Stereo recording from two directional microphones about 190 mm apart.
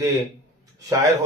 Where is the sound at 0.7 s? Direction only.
15° right (ahead or behind).